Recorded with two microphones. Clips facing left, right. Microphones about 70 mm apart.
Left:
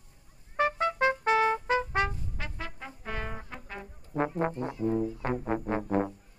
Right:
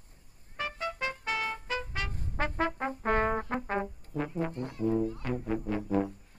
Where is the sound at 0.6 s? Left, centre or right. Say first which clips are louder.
Left 8 dB; left.